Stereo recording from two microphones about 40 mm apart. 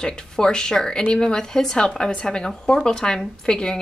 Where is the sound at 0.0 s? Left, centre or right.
Centre.